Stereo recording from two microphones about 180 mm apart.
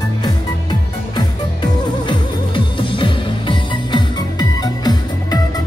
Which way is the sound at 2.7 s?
30° left (ahead or behind).